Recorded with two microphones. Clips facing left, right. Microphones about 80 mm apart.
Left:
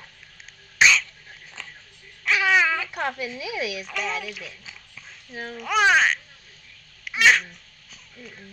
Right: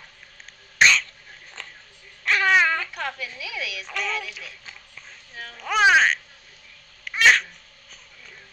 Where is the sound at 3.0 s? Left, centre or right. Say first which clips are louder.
Left 3 dB; centre.